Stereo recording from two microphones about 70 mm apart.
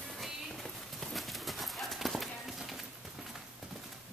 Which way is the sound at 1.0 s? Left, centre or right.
Centre.